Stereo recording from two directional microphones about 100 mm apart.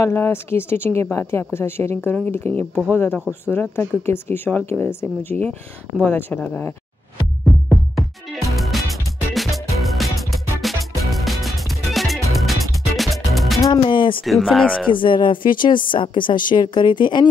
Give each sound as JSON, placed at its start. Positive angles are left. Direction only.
{"t": 0.0, "sound": "speech", "side_deg": 25}
{"t": 7.5, "sound": "music", "side_deg": 0}
{"t": 13.8, "sound": "a sound", "side_deg": 55}
{"t": 14.2, "sound": "speech", "side_deg": 0}
{"t": 14.9, "sound": "speech", "side_deg": 55}